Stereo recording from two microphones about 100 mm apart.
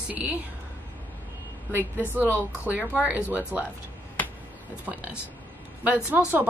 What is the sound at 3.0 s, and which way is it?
Speech, 15° right (ahead or behind).